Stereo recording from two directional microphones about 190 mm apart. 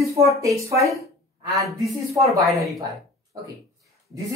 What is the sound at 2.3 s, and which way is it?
Speech, centre (ahead or behind).